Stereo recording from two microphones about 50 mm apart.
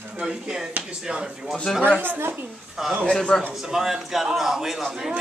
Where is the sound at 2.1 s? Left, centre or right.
Right.